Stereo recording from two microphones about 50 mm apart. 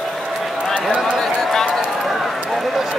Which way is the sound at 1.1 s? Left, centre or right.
Centre.